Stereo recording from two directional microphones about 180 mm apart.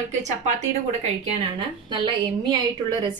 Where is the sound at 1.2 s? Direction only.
30° right (ahead or behind).